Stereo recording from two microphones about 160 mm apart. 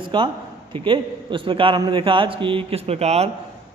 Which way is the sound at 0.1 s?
30° right (ahead or behind).